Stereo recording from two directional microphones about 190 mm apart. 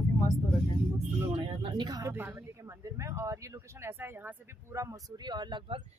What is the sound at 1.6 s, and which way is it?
Speech, 20° right (ahead or behind).